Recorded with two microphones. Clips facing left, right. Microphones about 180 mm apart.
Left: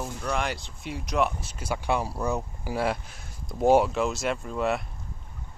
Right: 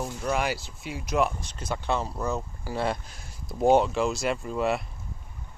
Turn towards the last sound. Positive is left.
turn(degrees=0)  # may be behind; listen again after turning